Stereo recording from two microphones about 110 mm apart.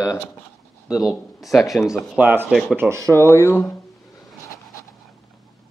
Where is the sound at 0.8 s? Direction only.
5° right (ahead or behind).